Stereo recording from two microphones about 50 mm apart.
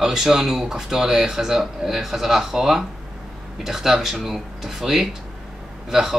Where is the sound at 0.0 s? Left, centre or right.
Centre.